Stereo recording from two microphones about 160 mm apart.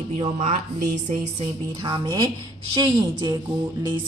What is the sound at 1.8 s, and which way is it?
Speech, 25° right (ahead or behind).